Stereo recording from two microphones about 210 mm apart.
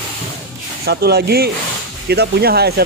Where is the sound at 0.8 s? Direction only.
50° right (ahead or behind).